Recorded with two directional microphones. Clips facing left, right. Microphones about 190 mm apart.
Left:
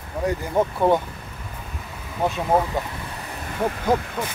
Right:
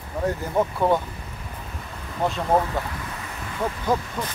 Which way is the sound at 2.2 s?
10° left (ahead or behind).